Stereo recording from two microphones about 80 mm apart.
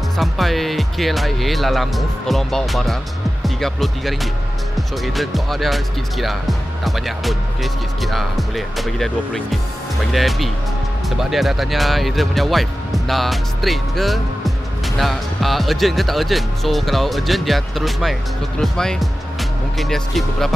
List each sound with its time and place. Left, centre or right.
0.2 s speech: centre